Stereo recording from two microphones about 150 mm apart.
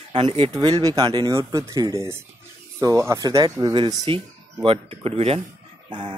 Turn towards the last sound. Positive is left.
turn(degrees=-30)  # may be behind; listen again after turning